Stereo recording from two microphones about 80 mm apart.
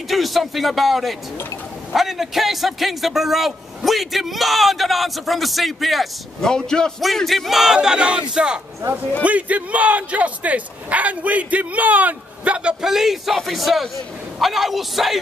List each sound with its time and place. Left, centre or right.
0.1 s a man's voice: centre